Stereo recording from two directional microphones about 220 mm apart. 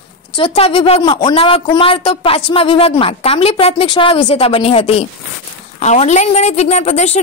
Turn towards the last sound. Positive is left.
turn(degrees=30)  # may be behind; listen again after turning